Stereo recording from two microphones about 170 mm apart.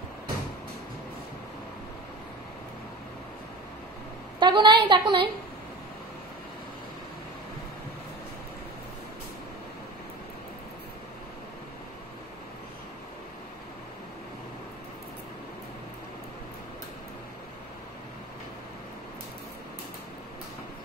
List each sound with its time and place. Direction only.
4.4 s a woman's voice: 25° right (ahead or behind)